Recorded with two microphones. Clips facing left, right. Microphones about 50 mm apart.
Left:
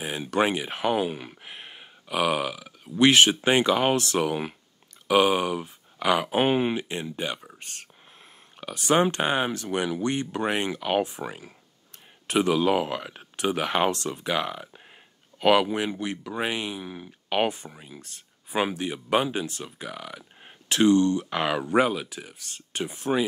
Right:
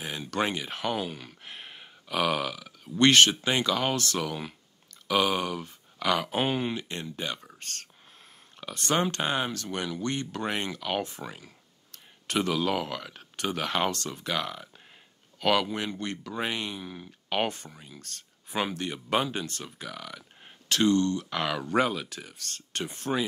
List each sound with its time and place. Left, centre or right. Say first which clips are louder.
0.0 s speech: left 5 dB; centre